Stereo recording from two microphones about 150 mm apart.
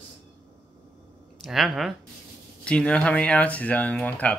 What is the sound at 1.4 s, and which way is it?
Speech, centre (ahead or behind).